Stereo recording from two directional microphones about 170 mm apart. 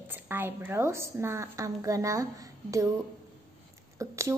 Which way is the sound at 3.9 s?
15° right (ahead or behind).